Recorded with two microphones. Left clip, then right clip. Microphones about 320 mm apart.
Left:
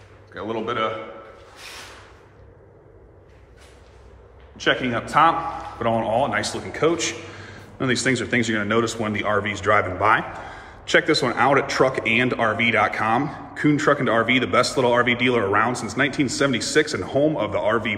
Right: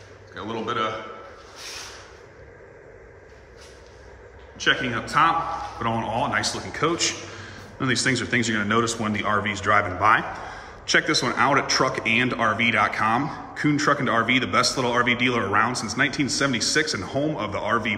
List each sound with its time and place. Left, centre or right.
0.3 s a man's voice: centre
4.6 s a man's voice: centre